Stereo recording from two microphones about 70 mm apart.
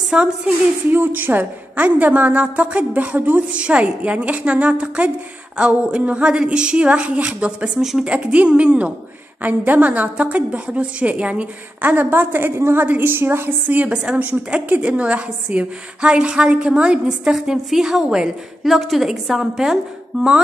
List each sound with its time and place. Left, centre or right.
0.1 s a woman's voice: centre
0.9 s a woman's voice: right
7.8 s a woman's voice: centre
8.1 s a woman's voice: centre